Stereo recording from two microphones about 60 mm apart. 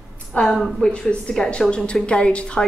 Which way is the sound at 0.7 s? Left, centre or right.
Centre.